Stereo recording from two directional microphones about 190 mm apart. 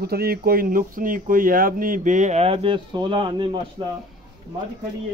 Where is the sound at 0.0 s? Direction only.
55° right (ahead or behind); by 3.9 s 30° right (ahead or behind).